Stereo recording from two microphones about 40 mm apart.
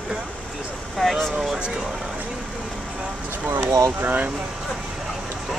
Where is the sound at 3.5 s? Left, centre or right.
Right.